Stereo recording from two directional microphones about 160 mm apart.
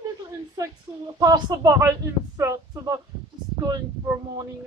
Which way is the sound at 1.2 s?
25° right (ahead or behind).